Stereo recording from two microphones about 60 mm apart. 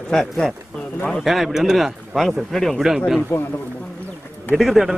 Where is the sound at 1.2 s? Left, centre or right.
Centre.